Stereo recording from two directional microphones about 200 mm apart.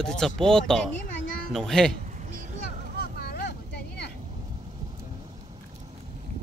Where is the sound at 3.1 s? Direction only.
50° left (ahead or behind).